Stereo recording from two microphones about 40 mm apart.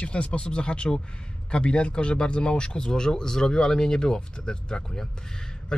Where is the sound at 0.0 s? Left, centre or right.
Left.